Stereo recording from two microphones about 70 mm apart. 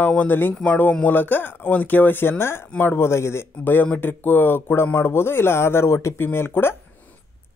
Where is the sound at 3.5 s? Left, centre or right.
Left.